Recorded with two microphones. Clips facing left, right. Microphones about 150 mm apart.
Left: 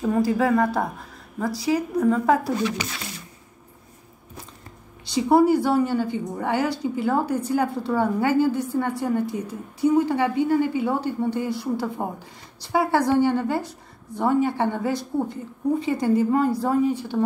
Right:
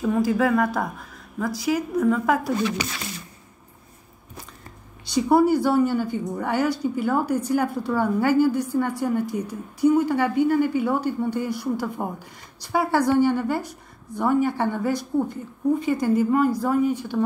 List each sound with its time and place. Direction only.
0.0 s a woman's voice: 30° left (ahead or behind)
5.0 s a woman's voice: 25° left (ahead or behind)